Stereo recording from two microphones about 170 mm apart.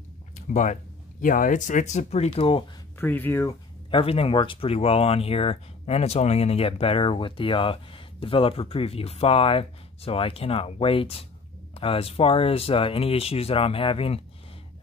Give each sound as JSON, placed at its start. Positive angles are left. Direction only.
{"t": 0.5, "sound": "speech", "side_deg": 45}
{"t": 3.0, "sound": "speech", "side_deg": 10}
{"t": 3.9, "sound": "speech", "side_deg": 35}